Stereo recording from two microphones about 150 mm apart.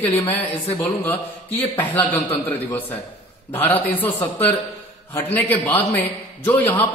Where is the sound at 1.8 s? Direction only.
10° left (ahead or behind).